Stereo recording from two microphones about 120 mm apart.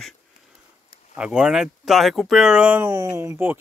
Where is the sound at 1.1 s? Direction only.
5° right (ahead or behind).